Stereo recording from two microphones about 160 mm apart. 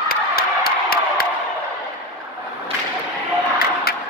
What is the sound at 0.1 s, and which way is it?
Crowd, 70° left (ahead or behind).